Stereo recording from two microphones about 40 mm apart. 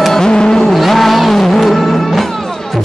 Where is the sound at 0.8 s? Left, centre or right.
Centre.